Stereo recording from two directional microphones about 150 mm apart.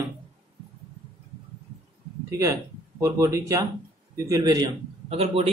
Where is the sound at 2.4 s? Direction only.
20° right (ahead or behind).